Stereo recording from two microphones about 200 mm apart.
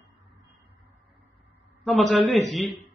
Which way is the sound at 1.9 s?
Centre (ahead or behind).